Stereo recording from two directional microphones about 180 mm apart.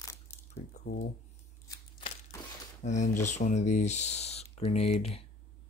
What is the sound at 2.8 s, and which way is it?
Speech, 40° left (ahead or behind).